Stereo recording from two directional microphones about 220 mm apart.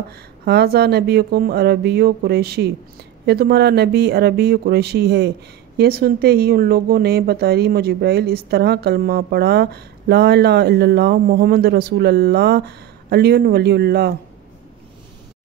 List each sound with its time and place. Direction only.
0.1 s speech: 45° right (ahead or behind)